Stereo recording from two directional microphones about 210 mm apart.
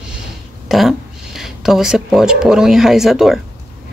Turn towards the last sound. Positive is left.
turn(degrees=0)  # may be behind; listen again after turning